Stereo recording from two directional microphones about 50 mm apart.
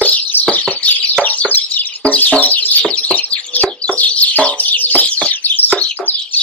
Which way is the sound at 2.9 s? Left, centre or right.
Left.